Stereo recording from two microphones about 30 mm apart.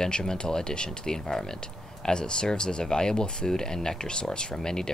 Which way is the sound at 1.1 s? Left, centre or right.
Centre.